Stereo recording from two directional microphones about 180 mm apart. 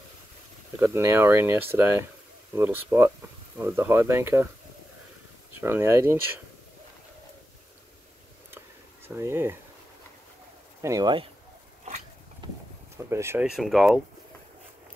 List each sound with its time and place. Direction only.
0.7 s speech: 15° right (ahead or behind)
5.6 s speech: 15° right (ahead or behind)
8.5 s a sound: 10° right (ahead or behind)
10.8 s speech: 20° right (ahead or behind)
12.4 s vehicle: 25° right (ahead or behind)
12.9 s speech: 15° right (ahead or behind)
13.5 s speech: centre (ahead or behind)